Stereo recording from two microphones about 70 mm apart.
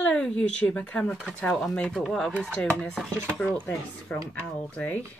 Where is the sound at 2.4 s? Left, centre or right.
Centre.